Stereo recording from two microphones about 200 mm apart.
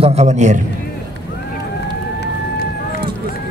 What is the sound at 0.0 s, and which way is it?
Speech, 30° right (ahead or behind).